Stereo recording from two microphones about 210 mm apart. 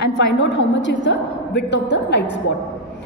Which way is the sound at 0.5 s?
60° left (ahead or behind).